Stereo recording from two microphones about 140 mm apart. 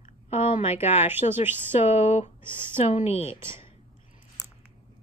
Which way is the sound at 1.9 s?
50° left (ahead or behind).